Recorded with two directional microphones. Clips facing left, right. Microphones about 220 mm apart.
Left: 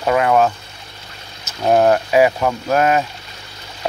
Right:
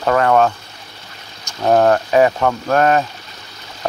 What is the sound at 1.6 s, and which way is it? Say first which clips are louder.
Speech: even; 15° left (ahead or behind).